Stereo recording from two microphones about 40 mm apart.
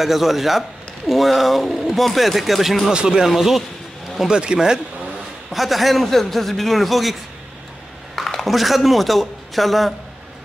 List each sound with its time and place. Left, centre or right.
0.0 s speech: centre
2.9 s speech: centre
3.3 s speech: centre
4.3 s speech: right
5.5 s speech: centre
8.2 s a sound: centre
8.5 s speech: centre